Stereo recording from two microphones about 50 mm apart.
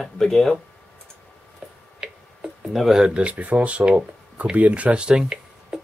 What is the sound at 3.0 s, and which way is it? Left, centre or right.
Speech, right.